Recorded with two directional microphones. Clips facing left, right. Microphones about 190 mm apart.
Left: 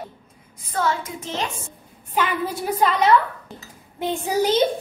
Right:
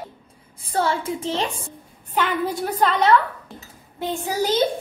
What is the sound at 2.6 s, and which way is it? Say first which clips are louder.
Speech: left 1 dB; 5° left (ahead or behind).